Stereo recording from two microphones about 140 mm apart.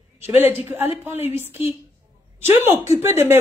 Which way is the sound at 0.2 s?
15° right (ahead or behind).